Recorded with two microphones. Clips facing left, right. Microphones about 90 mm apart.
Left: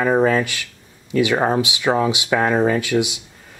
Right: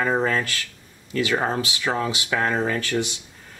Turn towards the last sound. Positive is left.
turn(degrees=10)  # may be behind; listen again after turning